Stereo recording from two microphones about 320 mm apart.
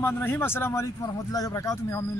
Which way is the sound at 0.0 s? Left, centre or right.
Centre.